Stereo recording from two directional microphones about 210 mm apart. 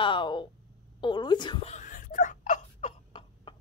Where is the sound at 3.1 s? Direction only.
25° left (ahead or behind).